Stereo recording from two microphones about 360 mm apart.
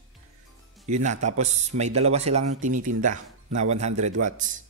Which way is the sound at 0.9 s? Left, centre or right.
Centre.